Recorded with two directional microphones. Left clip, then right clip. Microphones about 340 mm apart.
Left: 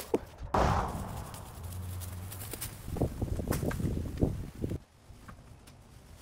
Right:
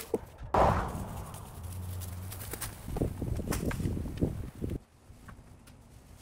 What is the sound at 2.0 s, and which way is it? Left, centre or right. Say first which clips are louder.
Clip-clop: right 2 dB; centre.